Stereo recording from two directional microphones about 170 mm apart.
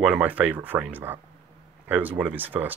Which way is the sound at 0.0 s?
5° right (ahead or behind).